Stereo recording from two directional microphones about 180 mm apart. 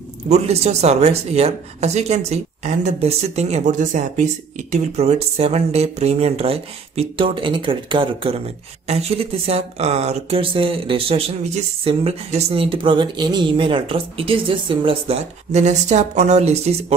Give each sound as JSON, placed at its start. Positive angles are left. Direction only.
{"t": 0.3, "sound": "speech", "side_deg": -35}